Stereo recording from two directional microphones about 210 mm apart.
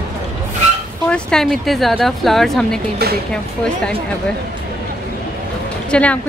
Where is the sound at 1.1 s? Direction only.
Centre (ahead or behind).